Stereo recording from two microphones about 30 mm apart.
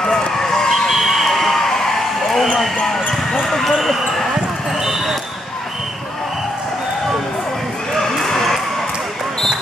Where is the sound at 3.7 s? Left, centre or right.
Centre.